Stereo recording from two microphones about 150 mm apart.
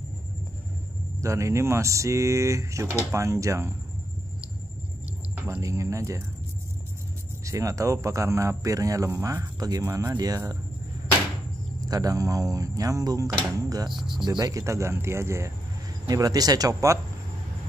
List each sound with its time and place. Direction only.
1.2 s speech: 20° right (ahead or behind)
5.3 s speech: 20° right (ahead or behind)
7.4 s speech: 20° right (ahead or behind)
11.9 s speech: 25° right (ahead or behind)
13.9 s speech: centre (ahead or behind)
14.4 s speech: 20° right (ahead or behind)